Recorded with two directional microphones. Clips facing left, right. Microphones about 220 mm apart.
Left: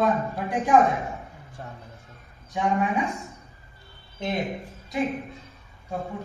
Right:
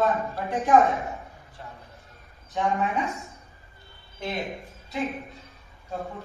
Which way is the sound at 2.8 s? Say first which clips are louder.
Left 2 dB; 15° left (ahead or behind).